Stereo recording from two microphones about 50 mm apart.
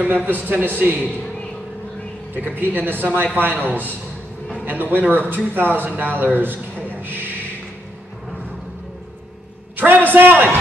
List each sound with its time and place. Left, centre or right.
0.0 s speech: right
2.3 s speech: right
9.8 s speech: right